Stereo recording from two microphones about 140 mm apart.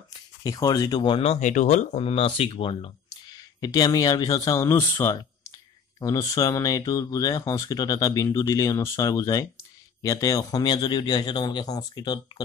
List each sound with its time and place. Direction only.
0.1 s speech: 25° left (ahead or behind)
3.6 s speech: 25° left (ahead or behind)